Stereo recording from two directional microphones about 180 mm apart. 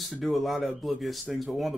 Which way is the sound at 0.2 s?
Centre (ahead or behind).